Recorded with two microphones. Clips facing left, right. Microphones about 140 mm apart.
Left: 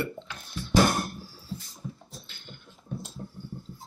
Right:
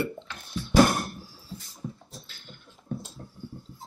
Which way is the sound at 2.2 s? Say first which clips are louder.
Left 1 dB; 5° right (ahead or behind).